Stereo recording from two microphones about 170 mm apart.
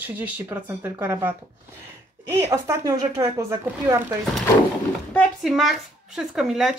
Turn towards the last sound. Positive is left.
turn(degrees=-5)  # may be behind; listen again after turning